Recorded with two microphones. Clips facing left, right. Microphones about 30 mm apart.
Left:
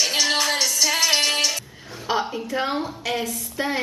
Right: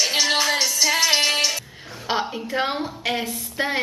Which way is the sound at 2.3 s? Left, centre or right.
Right.